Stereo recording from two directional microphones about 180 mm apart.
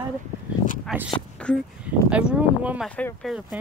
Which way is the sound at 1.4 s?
5° left (ahead or behind).